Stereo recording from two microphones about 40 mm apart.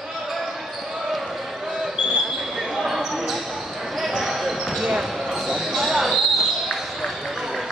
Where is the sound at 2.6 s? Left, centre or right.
Centre.